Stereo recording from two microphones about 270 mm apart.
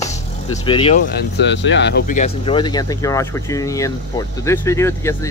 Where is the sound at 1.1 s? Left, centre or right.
Left.